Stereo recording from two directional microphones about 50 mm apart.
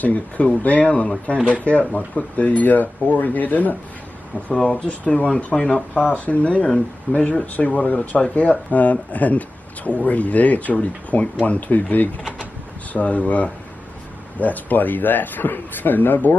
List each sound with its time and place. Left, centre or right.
0.0 s speech: left
4.7 s speech: left